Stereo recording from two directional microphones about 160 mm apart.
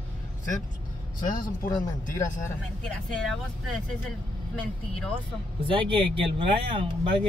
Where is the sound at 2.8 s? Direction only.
5° left (ahead or behind).